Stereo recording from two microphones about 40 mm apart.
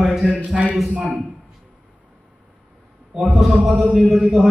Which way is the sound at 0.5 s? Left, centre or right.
Centre.